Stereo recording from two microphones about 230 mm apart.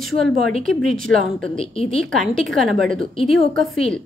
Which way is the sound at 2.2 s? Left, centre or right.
Centre.